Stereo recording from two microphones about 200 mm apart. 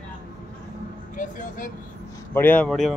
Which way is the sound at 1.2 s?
40° left (ahead or behind).